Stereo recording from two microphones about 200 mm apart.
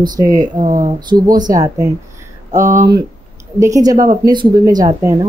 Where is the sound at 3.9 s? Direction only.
40° right (ahead or behind).